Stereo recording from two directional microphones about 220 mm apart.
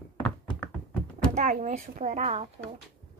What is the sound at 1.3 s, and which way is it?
Speech, 35° right (ahead or behind).